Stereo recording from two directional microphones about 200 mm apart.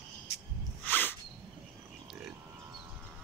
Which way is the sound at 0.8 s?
10° left (ahead or behind).